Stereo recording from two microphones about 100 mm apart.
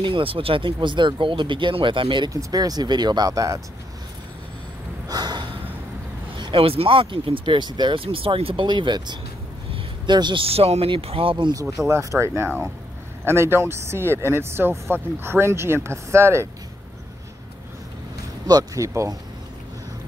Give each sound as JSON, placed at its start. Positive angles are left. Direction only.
{"t": 0.0, "sound": "speech", "side_deg": -60}
{"t": 2.3, "sound": "speech", "side_deg": -40}
{"t": 5.0, "sound": "snort", "side_deg": -45}
{"t": 6.3, "sound": "speech", "side_deg": -60}
{"t": 10.4, "sound": "speech", "side_deg": -80}
{"t": 11.9, "sound": "speech", "side_deg": -30}
{"t": 18.5, "sound": "speech", "side_deg": -35}